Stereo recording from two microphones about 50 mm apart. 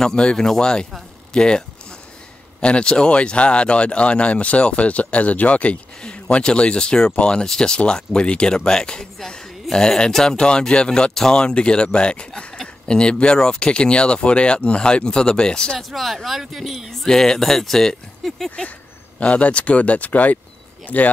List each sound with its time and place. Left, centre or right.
0.0 s speech: centre
2.6 s speech: left
15.9 s speech: centre
19.1 s speech: left